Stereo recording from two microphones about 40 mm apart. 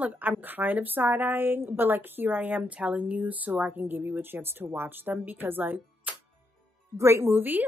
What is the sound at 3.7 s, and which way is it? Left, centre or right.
A woman's voice, right.